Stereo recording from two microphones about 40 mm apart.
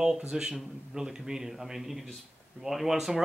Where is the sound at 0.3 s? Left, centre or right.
Centre.